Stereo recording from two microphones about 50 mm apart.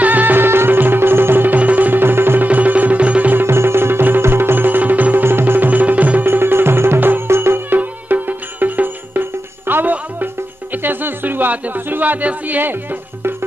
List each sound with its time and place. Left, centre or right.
0.0 s music: right
1.6 s music: right
2.4 s music: right
3.4 s music: right
5.2 s music: right
6.2 s music: right
7.2 s music: right